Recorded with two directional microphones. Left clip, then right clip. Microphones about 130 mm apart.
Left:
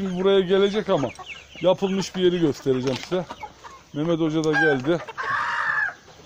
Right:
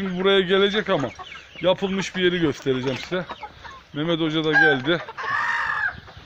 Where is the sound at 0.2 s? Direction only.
10° left (ahead or behind); by 5.0 s 25° left (ahead or behind).